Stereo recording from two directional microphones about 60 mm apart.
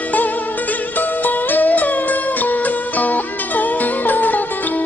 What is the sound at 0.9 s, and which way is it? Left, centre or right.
Music, left.